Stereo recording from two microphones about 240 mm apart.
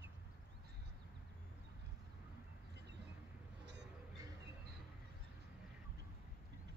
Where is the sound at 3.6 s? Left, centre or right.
Right.